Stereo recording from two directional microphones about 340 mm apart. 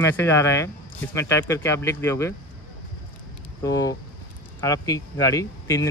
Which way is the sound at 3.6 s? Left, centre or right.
Centre.